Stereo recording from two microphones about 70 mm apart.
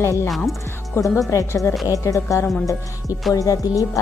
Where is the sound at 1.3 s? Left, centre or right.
Left.